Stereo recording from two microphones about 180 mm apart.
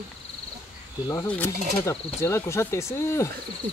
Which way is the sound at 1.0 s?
10° left (ahead or behind).